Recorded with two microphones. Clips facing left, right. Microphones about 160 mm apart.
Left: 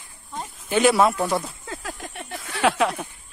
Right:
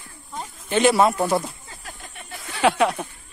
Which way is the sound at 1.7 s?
90° left.